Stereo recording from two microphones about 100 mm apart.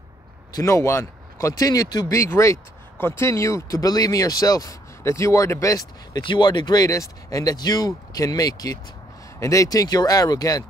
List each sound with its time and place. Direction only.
0.5 s speech: 35° left (ahead or behind)
2.1 s speech: 30° left (ahead or behind)
6.2 s speech: 50° left (ahead or behind)